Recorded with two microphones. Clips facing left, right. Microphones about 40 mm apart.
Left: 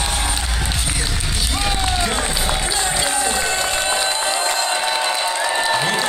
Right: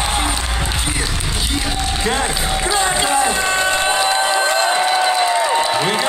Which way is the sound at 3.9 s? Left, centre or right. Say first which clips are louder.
Right 4 dB; centre.